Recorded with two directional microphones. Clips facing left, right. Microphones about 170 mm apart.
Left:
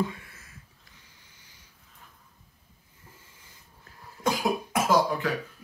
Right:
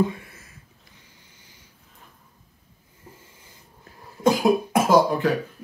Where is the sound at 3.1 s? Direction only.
25° right (ahead or behind).